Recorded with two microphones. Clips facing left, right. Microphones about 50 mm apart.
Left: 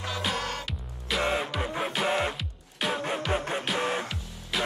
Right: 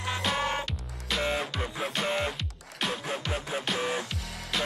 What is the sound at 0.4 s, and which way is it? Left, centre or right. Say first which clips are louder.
Music: right 4 dB; right.